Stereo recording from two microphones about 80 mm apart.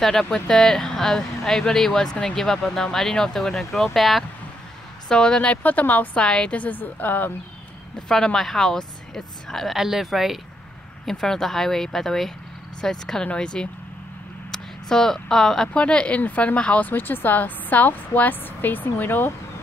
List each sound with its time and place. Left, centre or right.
0.0 s a woman's voice: centre; by 7.3 s left
8.1 s a woman's voice: centre; by 19.3 s left